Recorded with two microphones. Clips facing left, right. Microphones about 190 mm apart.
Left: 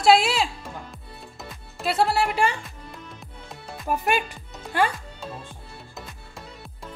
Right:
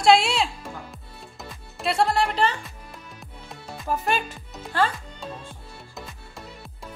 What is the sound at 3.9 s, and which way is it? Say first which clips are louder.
Speech: left 1 dB; 15° left (ahead or behind).